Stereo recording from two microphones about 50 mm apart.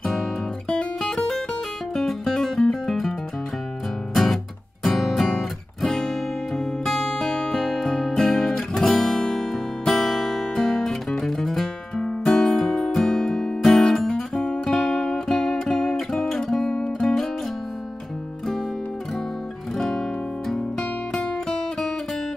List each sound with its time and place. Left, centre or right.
0.0 s music: centre
4.8 s guitar: centre
12.0 s music: centre
14.4 s music: centre
19.8 s guitar: centre
21.1 s music: centre